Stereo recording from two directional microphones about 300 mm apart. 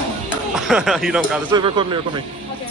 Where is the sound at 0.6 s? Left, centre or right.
Centre.